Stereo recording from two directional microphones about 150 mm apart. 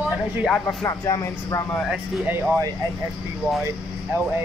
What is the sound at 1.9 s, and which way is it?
Speech, 15° right (ahead or behind).